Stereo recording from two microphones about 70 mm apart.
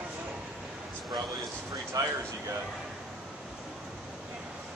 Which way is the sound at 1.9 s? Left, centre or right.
Right.